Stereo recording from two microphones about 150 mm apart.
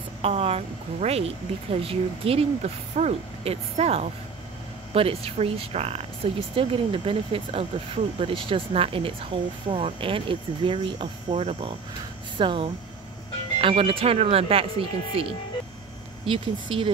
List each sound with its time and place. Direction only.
0.2 s speech: 40° right (ahead or behind)
11.3 s speech: 45° right (ahead or behind)
12.4 s speech: 35° right (ahead or behind)